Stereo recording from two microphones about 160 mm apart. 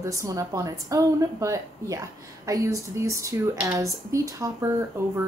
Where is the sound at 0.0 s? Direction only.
20° right (ahead or behind).